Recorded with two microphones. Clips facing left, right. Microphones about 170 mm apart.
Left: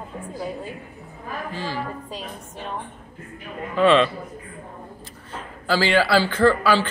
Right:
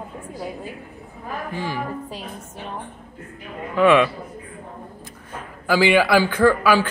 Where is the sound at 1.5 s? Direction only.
15° right (ahead or behind).